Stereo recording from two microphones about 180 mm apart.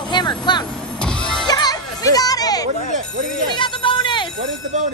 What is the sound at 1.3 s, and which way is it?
Music, 25° left (ahead or behind).